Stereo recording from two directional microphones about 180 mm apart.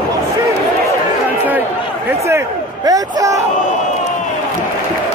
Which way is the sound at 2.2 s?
20° right (ahead or behind).